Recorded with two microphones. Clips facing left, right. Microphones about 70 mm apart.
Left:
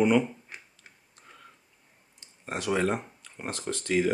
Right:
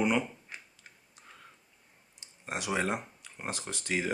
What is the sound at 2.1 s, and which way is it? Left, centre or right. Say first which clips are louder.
Speech: left 2 dB; centre.